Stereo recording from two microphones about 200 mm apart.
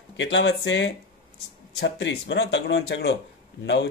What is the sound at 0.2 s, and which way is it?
Speech, 65° left (ahead or behind).